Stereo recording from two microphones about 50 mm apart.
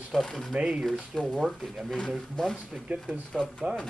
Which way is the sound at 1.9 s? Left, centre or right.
Centre.